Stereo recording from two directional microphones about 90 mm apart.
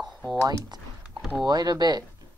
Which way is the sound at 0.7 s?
50° right (ahead or behind).